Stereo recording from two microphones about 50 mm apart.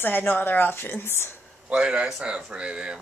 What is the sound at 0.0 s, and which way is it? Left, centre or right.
A woman's voice, left.